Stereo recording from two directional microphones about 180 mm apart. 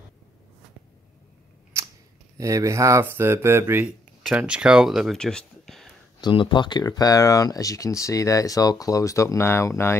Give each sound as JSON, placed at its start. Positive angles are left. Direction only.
{"t": 2.3, "sound": "speech", "side_deg": -15}
{"t": 6.2, "sound": "speech", "side_deg": 25}